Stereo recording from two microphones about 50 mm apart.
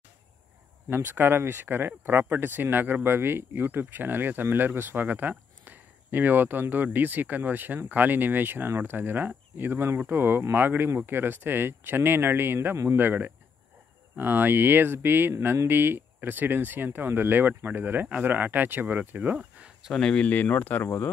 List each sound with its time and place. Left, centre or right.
0.8 s speech: right
3.5 s speech: right
20.0 s speech: centre
20.2 s speech: left
20.8 s speech: left